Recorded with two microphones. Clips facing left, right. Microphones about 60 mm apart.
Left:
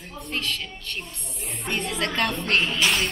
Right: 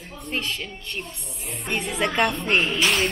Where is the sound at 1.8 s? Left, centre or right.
Centre.